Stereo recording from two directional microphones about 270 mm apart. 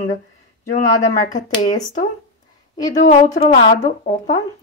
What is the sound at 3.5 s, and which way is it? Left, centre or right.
Speech, left.